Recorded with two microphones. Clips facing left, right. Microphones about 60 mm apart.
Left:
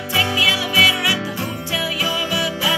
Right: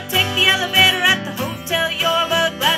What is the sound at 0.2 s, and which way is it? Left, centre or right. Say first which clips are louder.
Music: right 1 dB; centre.